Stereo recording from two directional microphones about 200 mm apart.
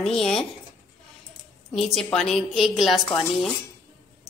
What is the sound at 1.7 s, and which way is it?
A woman's voice, centre (ahead or behind).